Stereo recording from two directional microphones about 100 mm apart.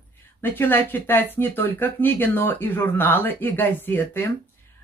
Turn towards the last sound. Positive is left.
turn(degrees=20)  # may be behind; listen again after turning